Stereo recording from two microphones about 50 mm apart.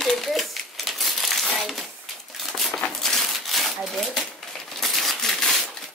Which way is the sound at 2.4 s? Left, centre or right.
Centre.